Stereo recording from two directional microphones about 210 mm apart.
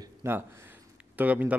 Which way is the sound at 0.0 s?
10° right (ahead or behind).